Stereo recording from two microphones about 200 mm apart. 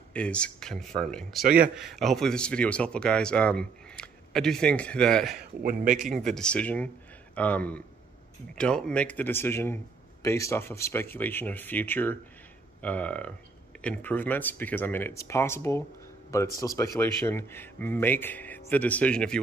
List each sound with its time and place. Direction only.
0.1 s speech: 5° left (ahead or behind)
1.4 s speech: 45° right (ahead or behind)
1.8 s speech: centre (ahead or behind)
5.6 s speech: 50° right (ahead or behind)
6.1 s speech: centre (ahead or behind)